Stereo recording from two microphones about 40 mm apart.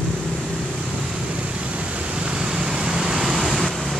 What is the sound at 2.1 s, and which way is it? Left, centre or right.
Vehicle, right.